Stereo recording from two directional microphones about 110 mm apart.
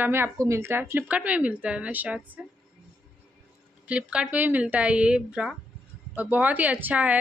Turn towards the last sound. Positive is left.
turn(degrees=-15)  # may be behind; listen again after turning